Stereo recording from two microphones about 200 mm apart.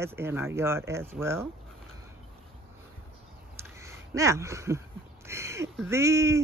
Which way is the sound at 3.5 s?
15° right (ahead or behind).